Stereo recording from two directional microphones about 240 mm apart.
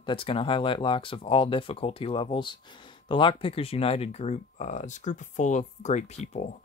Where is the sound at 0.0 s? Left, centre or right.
Left.